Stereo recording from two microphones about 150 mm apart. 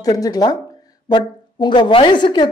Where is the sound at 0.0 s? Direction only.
25° left (ahead or behind).